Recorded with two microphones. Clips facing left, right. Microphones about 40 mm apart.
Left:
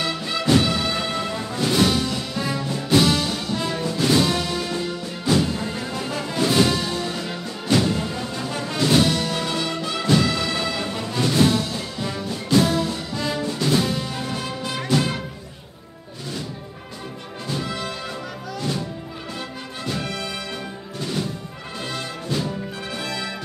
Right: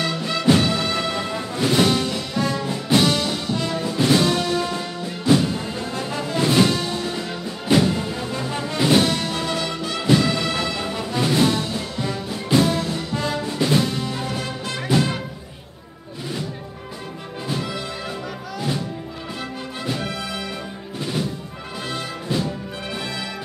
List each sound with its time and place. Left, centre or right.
0.0 s music: centre
3.5 s music: centre
3.8 s music: centre
5.6 s music: centre
5.9 s music: centre
7.6 s music: centre
9.3 s music: centre
13.7 s music: centre
17.5 s music: centre
21.9 s music: centre